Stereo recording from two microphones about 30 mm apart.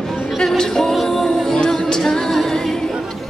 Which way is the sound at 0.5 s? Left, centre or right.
Centre.